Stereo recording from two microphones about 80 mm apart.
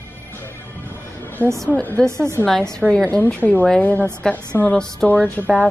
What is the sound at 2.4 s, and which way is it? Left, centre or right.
A woman's voice, centre.